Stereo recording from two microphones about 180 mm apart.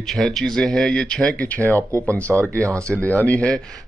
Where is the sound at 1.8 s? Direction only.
15° right (ahead or behind).